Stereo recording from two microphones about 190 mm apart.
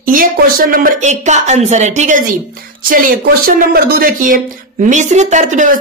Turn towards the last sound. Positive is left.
turn(degrees=-45)  # may be behind; listen again after turning